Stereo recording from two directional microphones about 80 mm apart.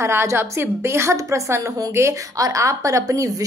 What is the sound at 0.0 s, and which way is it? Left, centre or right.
A woman's voice, right.